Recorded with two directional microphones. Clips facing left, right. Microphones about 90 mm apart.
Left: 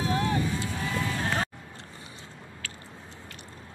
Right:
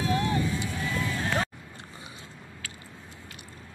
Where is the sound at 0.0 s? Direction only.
25° left (ahead or behind).